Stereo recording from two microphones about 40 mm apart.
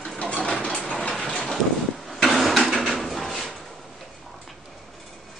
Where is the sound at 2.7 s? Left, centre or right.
Centre.